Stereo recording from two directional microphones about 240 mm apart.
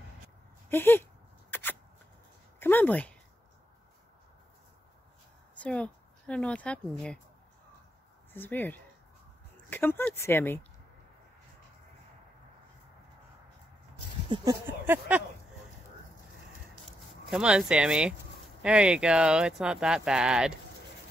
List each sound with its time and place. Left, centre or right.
0.7 s speech: centre
1.5 s shuffling cards: centre
2.6 s speech: centre
5.6 s speech: centre
8.3 s speech: centre
14.3 s speech: centre
17.3 s speech: centre